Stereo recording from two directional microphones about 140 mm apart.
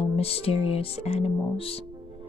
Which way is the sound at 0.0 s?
45° left (ahead or behind).